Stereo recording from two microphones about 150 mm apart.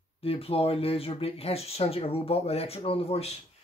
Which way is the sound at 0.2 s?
40° left (ahead or behind).